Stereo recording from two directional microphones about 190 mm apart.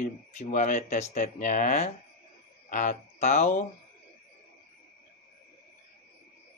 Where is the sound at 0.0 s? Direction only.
40° left (ahead or behind).